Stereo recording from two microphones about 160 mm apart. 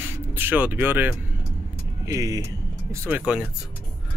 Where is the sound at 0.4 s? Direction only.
10° right (ahead or behind).